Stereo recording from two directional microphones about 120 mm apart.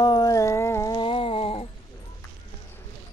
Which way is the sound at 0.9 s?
45° left (ahead or behind).